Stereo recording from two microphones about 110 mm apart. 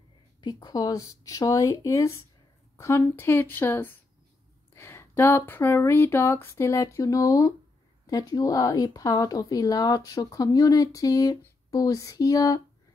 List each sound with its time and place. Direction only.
0.4 s speech: 35° left (ahead or behind)